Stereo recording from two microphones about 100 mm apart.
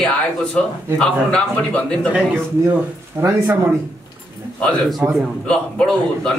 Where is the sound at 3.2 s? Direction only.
25° right (ahead or behind).